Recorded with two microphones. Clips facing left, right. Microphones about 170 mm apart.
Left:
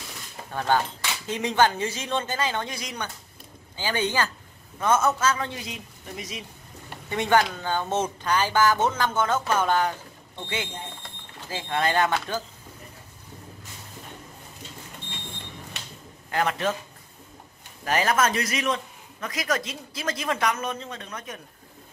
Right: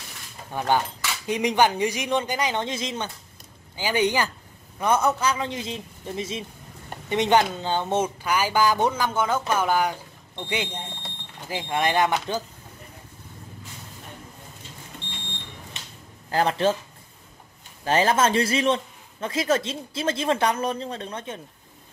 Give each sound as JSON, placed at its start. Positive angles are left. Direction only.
{"t": 0.5, "sound": "a man's voice", "side_deg": -15}
{"t": 8.0, "sound": "speech", "side_deg": -10}
{"t": 16.3, "sound": "a man's voice", "side_deg": -30}
{"t": 17.8, "sound": "a man's voice", "side_deg": -30}